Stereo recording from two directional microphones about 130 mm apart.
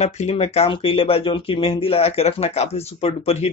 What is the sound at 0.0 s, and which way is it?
Speech, 60° left (ahead or behind).